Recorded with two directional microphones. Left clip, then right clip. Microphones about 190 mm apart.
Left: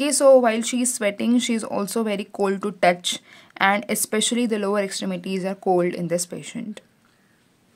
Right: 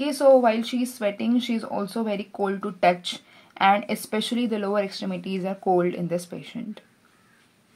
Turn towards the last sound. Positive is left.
turn(degrees=30)  # may be behind; listen again after turning